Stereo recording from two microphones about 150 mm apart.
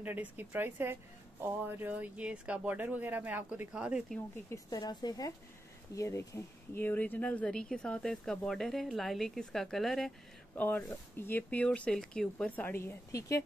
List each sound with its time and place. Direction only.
0.0 s speech: 10° right (ahead or behind)
4.5 s speech: 25° left (ahead or behind); by 10.1 s centre (ahead or behind)
10.5 s speech: 10° left (ahead or behind)